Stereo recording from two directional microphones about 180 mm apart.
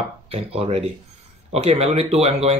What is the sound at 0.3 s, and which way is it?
Speech, 35° right (ahead or behind).